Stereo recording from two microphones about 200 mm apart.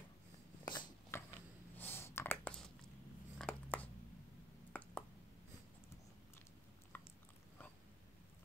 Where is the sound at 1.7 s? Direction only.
10° left (ahead or behind).